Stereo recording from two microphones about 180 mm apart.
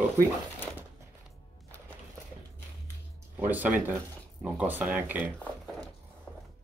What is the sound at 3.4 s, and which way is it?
Speech, 10° right (ahead or behind).